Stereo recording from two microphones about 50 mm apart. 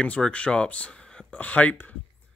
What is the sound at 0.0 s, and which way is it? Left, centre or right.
Speech, left.